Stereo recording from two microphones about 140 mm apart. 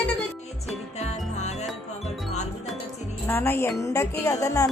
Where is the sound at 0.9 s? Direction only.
50° left (ahead or behind).